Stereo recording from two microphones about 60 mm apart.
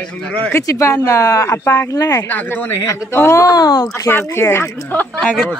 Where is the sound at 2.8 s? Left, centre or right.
Left.